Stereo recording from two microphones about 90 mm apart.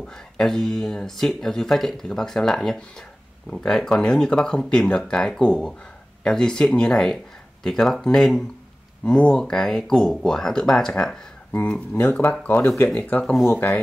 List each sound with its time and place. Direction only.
0.0 s speech: 5° left (ahead or behind)
11.9 s speech: 20° left (ahead or behind)
13.2 s speech: centre (ahead or behind)
13.5 s speech: 25° left (ahead or behind)